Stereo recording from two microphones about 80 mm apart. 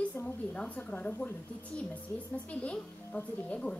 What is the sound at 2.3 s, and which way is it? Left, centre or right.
A man's voice, centre.